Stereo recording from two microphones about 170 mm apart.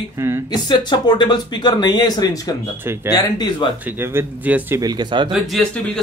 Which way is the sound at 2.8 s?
15° right (ahead or behind).